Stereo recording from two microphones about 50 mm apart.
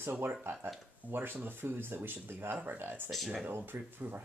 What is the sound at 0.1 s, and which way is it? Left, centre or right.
Speech, right.